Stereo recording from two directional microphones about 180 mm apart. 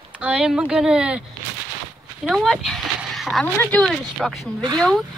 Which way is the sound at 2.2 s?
Centre (ahead or behind).